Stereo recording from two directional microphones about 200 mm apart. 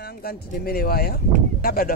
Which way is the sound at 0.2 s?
50° left (ahead or behind).